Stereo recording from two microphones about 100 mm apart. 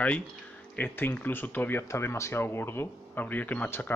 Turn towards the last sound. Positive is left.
turn(degrees=15)  # may be behind; listen again after turning